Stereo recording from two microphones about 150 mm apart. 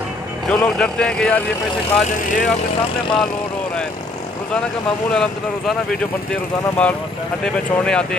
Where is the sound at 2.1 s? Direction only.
60° left (ahead or behind).